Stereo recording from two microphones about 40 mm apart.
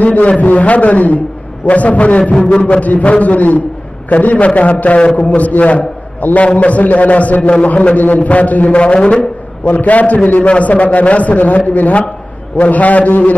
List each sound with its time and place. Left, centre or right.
0.0 s a man's voice: left
9.7 s a man's voice: left